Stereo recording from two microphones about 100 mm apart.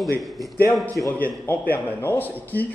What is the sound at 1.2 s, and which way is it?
Speech, 20° left (ahead or behind).